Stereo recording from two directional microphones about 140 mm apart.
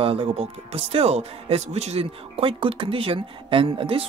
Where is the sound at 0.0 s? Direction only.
40° right (ahead or behind).